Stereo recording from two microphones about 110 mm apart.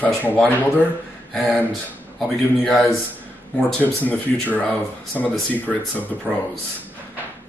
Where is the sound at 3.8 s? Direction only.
15° left (ahead or behind).